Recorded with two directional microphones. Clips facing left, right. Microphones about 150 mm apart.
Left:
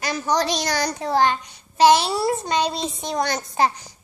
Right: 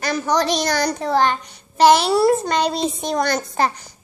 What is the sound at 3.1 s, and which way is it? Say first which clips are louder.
Speech: even; 55° right (ahead or behind).